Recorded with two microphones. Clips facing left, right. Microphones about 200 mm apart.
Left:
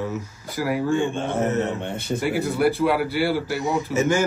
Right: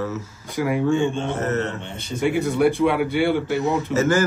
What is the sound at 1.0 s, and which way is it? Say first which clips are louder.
Speech: right 2 dB; 55° left (ahead or behind).